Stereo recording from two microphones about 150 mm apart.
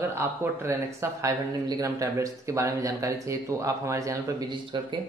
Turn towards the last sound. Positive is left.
turn(degrees=-30)  # may be behind; listen again after turning